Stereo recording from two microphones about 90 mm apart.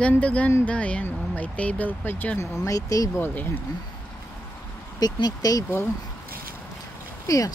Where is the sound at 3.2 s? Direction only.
20° left (ahead or behind).